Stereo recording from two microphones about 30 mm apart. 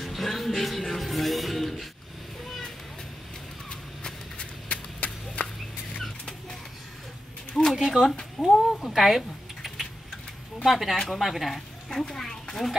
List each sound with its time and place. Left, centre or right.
0.0 s music: centre
4.4 s a sound: left
7.7 s speech: centre
8.5 s speech: centre
8.9 s typing: centre
10.6 s speech: centre
11.9 s speech: centre